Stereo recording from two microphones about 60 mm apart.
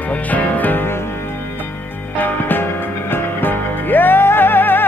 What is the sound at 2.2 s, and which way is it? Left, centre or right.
Music, left.